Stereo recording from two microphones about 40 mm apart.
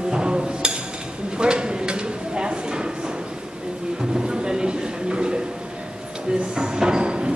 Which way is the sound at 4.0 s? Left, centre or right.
Right.